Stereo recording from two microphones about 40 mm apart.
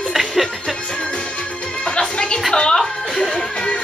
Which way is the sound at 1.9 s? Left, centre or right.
Left.